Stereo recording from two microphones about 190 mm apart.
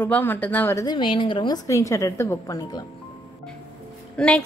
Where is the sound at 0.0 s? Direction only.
10° left (ahead or behind).